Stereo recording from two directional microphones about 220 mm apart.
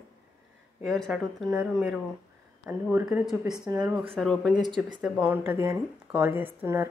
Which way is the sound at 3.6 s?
20° right (ahead or behind).